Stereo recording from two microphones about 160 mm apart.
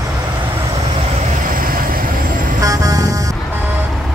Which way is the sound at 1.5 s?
65° right (ahead or behind).